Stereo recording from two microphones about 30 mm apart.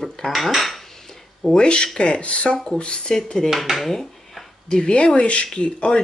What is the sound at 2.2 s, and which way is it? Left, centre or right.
Speech, left.